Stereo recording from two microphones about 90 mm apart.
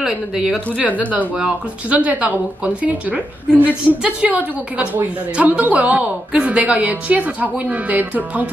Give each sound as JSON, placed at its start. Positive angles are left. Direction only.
{"t": 0.0, "sound": "speech", "side_deg": -5}
{"t": 0.8, "sound": "speech", "side_deg": -15}